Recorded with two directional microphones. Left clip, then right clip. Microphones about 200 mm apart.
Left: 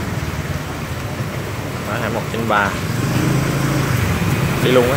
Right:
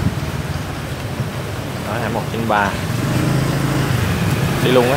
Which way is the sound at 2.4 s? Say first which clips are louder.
Even; 5° right (ahead or behind).